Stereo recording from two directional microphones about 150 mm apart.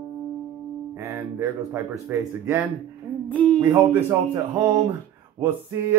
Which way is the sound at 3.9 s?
15° right (ahead or behind).